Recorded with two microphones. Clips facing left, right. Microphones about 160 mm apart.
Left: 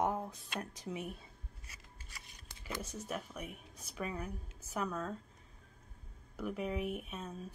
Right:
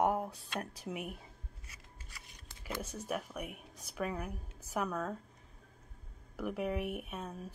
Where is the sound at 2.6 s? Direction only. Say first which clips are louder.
Right 3 dB; 5° right (ahead or behind).